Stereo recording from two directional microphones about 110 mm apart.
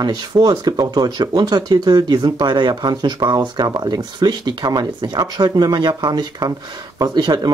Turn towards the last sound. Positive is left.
turn(degrees=-40)  # may be behind; listen again after turning